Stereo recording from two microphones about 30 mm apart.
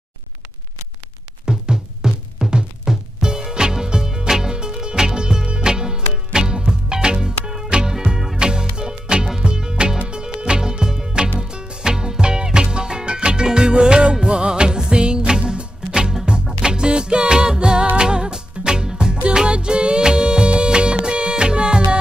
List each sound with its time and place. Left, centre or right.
1.4 s music: right